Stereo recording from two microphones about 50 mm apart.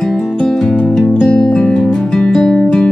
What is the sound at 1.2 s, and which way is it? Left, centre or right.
Music, left.